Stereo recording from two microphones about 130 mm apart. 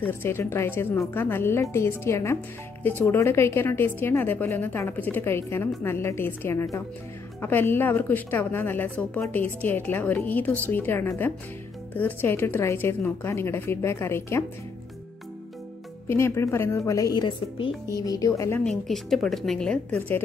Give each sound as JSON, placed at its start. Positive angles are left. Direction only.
{"t": 0.0, "sound": "a woman's voice", "side_deg": 15}
{"t": 16.1, "sound": "a woman's voice", "side_deg": 20}
{"t": 18.6, "sound": "a woman's voice", "side_deg": 5}